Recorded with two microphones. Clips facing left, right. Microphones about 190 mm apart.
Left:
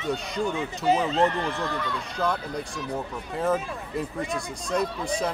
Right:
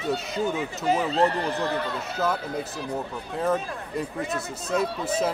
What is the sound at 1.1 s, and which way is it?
Speech, 35° right (ahead or behind).